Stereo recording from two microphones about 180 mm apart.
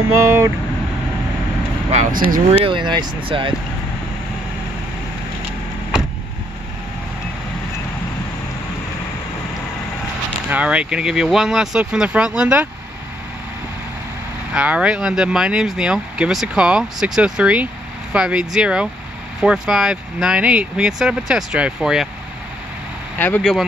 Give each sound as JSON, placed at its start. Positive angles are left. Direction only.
{"t": 0.2, "sound": "vehicle", "side_deg": -15}
{"t": 1.9, "sound": "speech", "side_deg": -45}
{"t": 2.6, "sound": "speech", "side_deg": -25}
{"t": 10.5, "sound": "speech", "side_deg": -5}
{"t": 14.5, "sound": "speech", "side_deg": -5}
{"t": 23.1, "sound": "speech", "side_deg": 10}